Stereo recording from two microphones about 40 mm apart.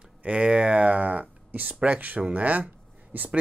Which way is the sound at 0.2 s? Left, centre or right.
Right.